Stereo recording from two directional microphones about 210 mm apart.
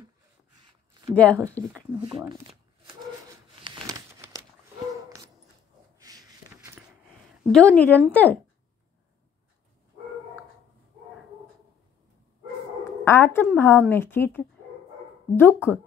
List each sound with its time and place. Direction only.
1.1 s speech: 5° left (ahead or behind)
2.0 s speech: 20° right (ahead or behind)
3.6 s a sound: 20° right (ahead or behind)
5.9 s a sound: 15° right (ahead or behind)
7.5 s speech: 5° left (ahead or behind)
13.0 s a woman's voice: 10° left (ahead or behind)